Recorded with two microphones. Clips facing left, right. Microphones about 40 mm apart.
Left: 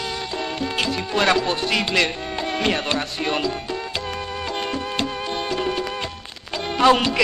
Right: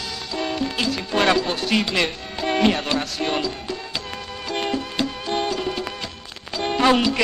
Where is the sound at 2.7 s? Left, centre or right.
Centre.